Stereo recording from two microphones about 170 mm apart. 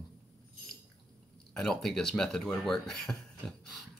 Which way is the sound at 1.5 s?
5° left (ahead or behind).